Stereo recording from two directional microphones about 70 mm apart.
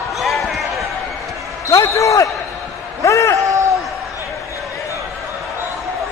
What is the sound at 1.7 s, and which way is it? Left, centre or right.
Basketball bounce, left.